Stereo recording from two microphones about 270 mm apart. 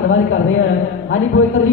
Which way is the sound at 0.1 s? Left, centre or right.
Left.